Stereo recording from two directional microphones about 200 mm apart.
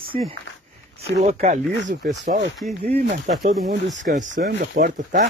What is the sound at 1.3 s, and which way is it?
Speech, 35° right (ahead or behind).